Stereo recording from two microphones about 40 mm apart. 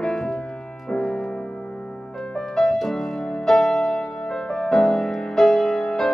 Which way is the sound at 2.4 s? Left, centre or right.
Centre.